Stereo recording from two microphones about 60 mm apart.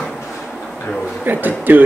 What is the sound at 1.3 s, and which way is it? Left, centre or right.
Speech, right.